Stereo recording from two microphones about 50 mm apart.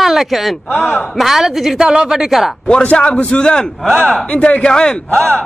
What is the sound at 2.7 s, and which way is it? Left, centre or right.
A man's voice, left.